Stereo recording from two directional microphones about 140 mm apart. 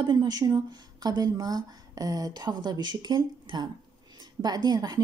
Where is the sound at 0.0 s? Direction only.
30° right (ahead or behind).